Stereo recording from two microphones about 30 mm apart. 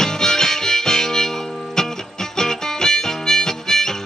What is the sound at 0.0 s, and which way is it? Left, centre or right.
Music, centre.